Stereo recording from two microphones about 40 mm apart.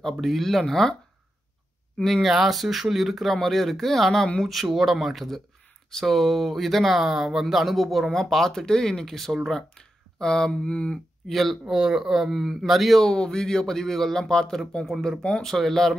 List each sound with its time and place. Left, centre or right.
0.0 s speech: centre
2.2 s speech: centre
3.3 s speech: centre
8.1 s speech: centre
9.6 s a sound: centre
10.5 s speech: left
11.2 s speech: centre
11.6 s speech: centre
12.1 s speech: centre
13.1 s speech: centre